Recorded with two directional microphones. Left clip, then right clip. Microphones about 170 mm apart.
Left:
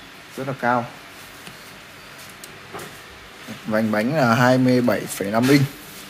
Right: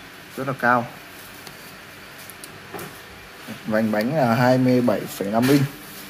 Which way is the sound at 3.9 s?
15° left (ahead or behind).